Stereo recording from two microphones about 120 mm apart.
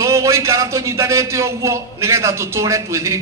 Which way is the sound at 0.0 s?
25° right (ahead or behind).